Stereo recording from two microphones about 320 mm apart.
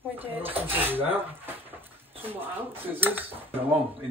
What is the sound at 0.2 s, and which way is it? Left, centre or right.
Speech, centre.